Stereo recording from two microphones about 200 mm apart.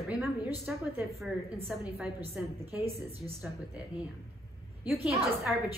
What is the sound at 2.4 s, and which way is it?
Speech, 5° right (ahead or behind).